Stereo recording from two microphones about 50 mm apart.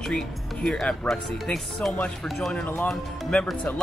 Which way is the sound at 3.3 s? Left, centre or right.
Left.